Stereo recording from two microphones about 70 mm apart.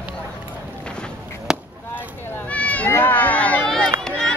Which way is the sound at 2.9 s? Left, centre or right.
Left.